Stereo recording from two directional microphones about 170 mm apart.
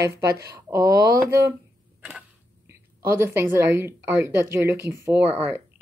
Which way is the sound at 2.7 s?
15° right (ahead or behind).